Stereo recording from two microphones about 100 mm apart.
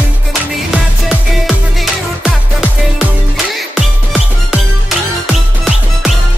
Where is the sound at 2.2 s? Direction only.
5° right (ahead or behind).